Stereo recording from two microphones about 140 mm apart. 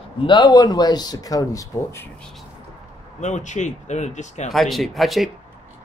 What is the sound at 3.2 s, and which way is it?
A woman's voice, 55° left (ahead or behind).